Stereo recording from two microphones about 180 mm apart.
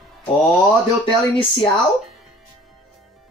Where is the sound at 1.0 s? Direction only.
30° left (ahead or behind).